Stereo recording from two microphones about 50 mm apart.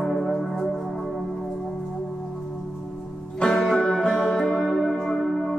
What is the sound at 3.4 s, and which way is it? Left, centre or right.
Music, centre.